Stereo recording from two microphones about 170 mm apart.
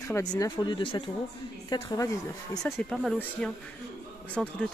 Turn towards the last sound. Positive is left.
turn(degrees=5)  # may be behind; listen again after turning